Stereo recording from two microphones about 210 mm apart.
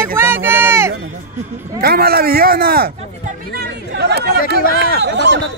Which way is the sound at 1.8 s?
45° right (ahead or behind).